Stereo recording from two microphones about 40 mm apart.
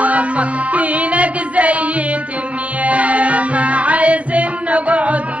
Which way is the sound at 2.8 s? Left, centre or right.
Right.